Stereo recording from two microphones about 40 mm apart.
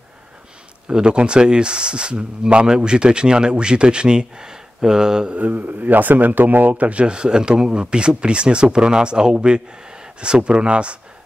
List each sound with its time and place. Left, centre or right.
0.8 s speech: right
5.5 s speech: right